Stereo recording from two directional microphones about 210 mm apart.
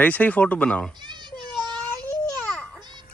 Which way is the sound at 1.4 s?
20° right (ahead or behind).